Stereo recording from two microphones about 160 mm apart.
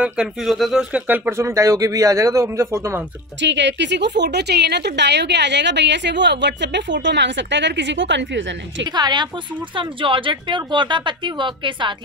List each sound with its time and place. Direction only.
0.0 s speech: centre (ahead or behind)
3.4 s a woman's voice: 90° right
8.9 s a woman's voice: 25° right (ahead or behind)